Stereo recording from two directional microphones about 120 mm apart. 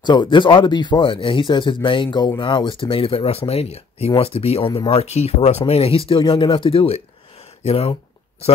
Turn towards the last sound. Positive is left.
turn(degrees=60)  # may be behind; listen again after turning